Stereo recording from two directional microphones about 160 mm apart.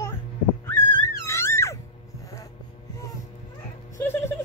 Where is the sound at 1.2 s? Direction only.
15° left (ahead or behind).